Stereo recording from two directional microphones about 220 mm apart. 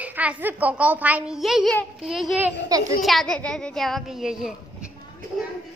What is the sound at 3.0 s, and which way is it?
A woman's voice, centre (ahead or behind).